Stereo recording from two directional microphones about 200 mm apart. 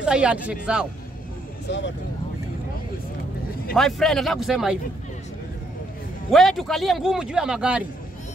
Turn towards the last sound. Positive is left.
turn(degrees=-5)  # may be behind; listen again after turning